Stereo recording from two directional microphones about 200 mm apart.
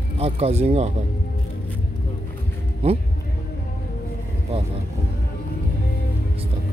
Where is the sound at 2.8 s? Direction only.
30° right (ahead or behind).